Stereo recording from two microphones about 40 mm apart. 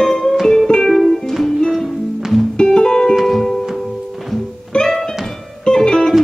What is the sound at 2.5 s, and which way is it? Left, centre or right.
Music, centre.